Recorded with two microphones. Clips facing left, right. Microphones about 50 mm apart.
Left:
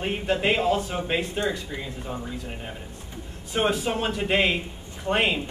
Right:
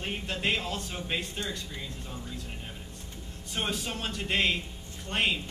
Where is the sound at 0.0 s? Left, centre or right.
Centre.